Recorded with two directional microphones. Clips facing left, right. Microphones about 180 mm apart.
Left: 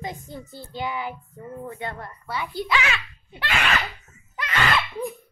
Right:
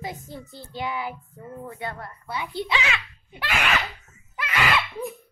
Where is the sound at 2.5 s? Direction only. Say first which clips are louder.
Left 2 dB; 25° right (ahead or behind).